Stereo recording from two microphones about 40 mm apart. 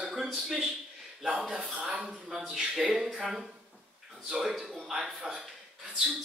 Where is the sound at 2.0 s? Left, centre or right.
Centre.